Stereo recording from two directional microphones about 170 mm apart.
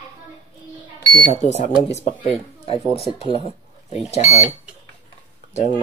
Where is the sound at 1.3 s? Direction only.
40° left (ahead or behind).